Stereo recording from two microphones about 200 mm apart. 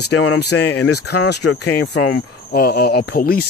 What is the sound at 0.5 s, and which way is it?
Speech, 90° left.